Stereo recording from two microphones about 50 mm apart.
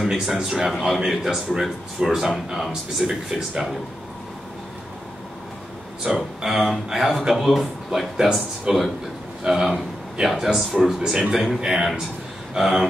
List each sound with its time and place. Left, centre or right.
0.0 s a man's voice: centre
6.0 s a man's voice: centre